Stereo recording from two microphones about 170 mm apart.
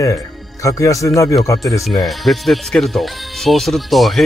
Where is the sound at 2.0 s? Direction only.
Centre (ahead or behind).